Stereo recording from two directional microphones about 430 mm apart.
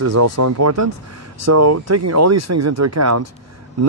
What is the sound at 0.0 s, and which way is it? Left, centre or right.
Speech, right.